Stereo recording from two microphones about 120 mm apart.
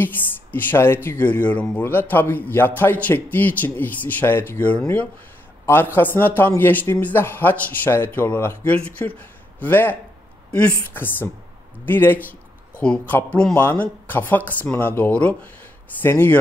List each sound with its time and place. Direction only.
0.0 s speech: 15° left (ahead or behind)